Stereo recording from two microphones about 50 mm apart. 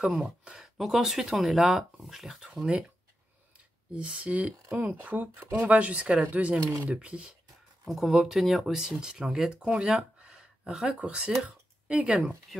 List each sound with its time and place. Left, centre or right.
0.2 s speech: centre
3.9 s speech: right
7.0 s speech: centre
7.9 s speech: centre
9.8 s a sound: centre
10.9 s speech: right